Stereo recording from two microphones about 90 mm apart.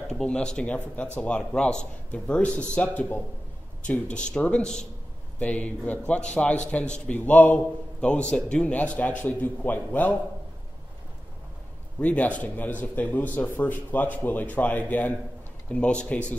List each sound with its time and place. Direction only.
0.1 s a man's voice: 10° left (ahead or behind)
12.0 s a man's voice: 15° left (ahead or behind)